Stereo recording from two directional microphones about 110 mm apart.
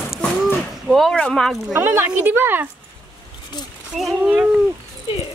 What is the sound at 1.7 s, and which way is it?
Speech, 15° right (ahead or behind).